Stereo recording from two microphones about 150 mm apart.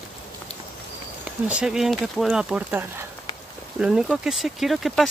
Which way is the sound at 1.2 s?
5° right (ahead or behind).